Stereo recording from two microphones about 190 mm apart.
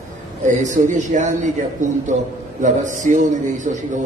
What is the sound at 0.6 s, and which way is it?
Speech, 40° right (ahead or behind).